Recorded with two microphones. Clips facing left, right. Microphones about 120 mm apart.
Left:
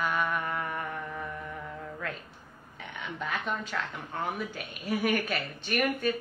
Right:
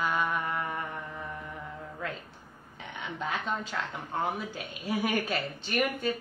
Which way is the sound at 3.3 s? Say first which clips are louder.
Even; 30° right (ahead or behind).